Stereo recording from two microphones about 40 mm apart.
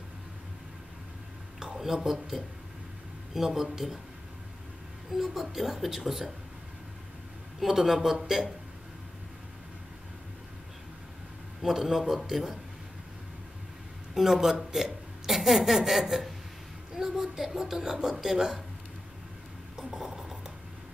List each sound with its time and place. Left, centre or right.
1.6 s a woman's voice: centre
5.1 s a woman's voice: centre
7.6 s a woman's voice: centre
11.6 s a woman's voice: centre
14.1 s a woman's voice: centre
17.9 s speech: right
18.2 s a woman's voice: centre
20.0 s rub: centre